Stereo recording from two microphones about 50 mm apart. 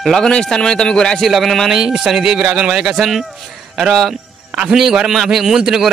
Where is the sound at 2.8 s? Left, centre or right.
Centre.